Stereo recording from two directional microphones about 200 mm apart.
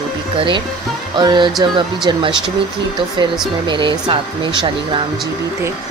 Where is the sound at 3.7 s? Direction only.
25° right (ahead or behind).